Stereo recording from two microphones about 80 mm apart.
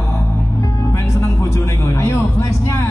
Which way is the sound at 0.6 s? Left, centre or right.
Left.